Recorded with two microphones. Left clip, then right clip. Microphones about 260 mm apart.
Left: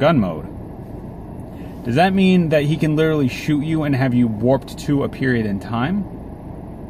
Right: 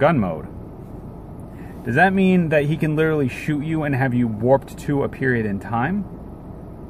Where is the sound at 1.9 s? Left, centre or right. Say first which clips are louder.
Even; right.